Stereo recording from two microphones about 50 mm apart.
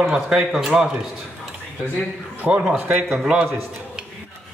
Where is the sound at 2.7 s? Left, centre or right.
Right.